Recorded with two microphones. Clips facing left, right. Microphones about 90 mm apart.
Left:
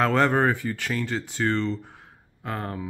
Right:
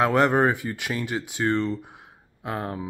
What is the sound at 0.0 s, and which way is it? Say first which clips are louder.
Speech: right 1 dB; 15° right (ahead or behind).